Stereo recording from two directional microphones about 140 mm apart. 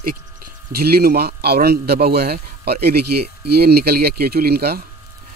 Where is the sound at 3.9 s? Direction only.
90° right.